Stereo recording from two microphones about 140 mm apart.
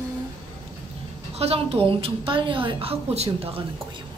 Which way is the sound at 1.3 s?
45° right (ahead or behind).